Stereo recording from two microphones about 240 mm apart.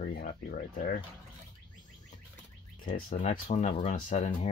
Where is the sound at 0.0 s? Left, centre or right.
Left.